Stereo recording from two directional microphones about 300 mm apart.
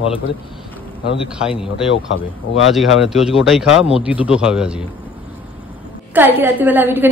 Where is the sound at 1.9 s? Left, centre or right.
Left.